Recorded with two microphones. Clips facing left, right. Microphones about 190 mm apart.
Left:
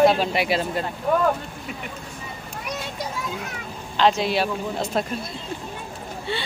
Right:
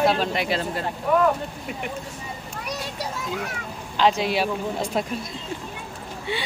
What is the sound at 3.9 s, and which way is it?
A man's voice, 10° right (ahead or behind).